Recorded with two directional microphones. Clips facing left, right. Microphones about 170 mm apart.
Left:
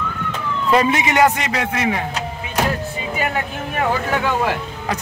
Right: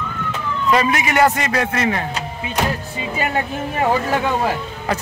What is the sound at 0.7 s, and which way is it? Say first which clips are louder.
A man's voice: left 1 dB; 25° left (ahead or behind).